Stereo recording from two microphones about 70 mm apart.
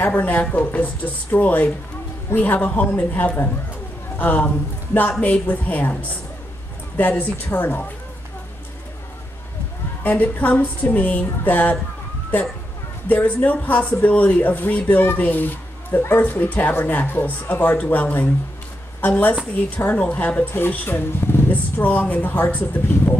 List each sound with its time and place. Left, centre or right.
0.0 s speech: left
10.0 s speech: left
13.1 s a woman's voice: left